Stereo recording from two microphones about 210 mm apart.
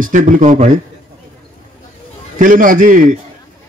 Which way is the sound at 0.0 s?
40° right (ahead or behind).